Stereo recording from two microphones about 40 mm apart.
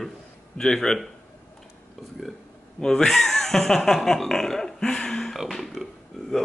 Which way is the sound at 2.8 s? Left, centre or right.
Centre.